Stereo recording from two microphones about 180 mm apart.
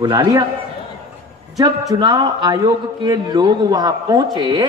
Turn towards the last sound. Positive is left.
turn(degrees=-20)  # may be behind; listen again after turning